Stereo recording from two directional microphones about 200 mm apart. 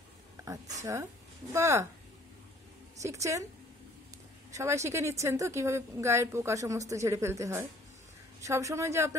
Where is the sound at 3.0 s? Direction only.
15° right (ahead or behind).